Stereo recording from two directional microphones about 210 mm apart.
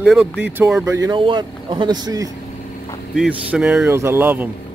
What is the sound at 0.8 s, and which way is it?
Speech, 15° right (ahead or behind).